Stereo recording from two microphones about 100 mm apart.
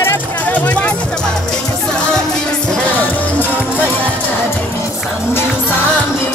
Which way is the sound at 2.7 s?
15° left (ahead or behind).